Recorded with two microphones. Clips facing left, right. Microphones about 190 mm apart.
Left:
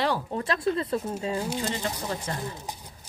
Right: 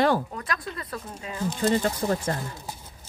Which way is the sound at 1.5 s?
50° right (ahead or behind).